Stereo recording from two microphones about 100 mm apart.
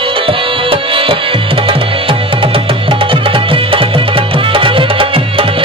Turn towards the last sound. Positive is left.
turn(degrees=-65)  # may be behind; listen again after turning